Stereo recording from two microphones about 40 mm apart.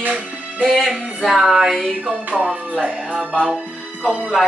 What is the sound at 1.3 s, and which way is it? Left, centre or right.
Music, centre.